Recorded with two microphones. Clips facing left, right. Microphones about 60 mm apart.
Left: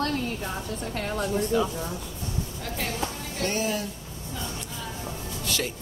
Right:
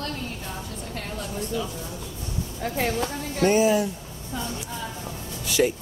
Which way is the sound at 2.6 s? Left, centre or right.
Right.